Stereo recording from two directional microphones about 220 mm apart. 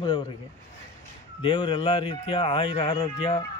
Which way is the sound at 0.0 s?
25° left (ahead or behind).